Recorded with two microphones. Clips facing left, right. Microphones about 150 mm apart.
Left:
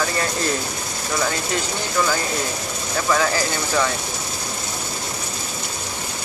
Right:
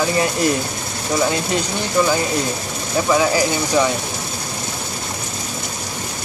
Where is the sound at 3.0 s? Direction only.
15° right (ahead or behind).